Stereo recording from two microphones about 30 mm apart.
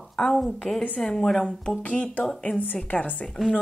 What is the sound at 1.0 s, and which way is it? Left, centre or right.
Speech, left.